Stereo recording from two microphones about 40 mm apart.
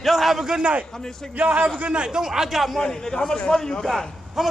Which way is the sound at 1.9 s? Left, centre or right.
Right.